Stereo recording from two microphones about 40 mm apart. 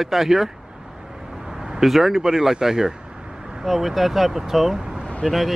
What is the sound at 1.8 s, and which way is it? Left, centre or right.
Speech, centre.